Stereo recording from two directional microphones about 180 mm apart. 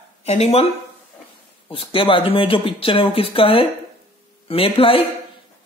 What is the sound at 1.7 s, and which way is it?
Speech, 30° left (ahead or behind).